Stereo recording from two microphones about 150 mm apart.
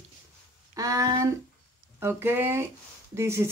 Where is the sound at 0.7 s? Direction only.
25° right (ahead or behind).